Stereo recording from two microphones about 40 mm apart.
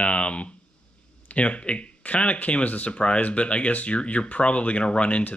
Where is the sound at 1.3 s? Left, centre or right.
Left.